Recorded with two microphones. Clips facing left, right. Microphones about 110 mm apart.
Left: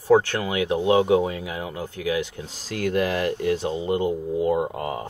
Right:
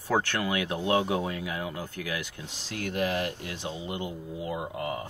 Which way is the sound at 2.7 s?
90° left.